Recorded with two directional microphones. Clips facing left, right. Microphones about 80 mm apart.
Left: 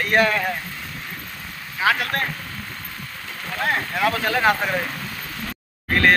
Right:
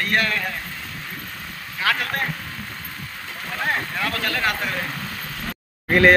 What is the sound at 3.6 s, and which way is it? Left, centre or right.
Speech, centre.